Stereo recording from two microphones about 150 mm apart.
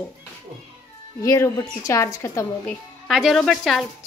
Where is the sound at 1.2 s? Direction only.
20° left (ahead or behind).